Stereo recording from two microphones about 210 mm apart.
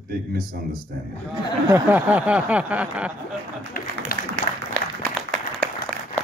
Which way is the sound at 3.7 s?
45° left (ahead or behind).